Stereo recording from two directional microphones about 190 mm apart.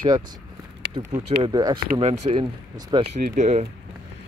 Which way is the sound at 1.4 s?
25° right (ahead or behind).